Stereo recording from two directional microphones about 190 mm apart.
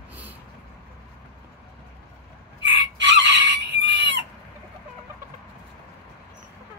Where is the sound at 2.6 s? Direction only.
70° right (ahead or behind).